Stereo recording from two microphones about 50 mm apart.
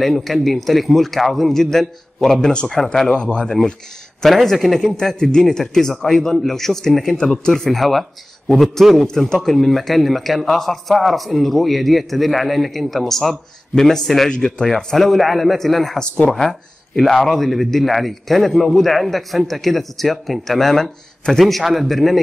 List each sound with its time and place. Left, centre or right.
0.0 s a man's voice: centre
3.1 s speech: left
4.2 s a man's voice: centre
14.3 s a man's voice: centre
16.0 s speech: centre
17.0 s a man's voice: centre